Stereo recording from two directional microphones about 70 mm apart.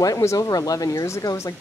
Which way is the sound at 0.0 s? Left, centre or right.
Left.